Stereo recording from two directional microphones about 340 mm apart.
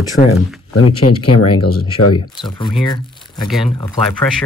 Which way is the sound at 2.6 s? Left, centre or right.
Centre.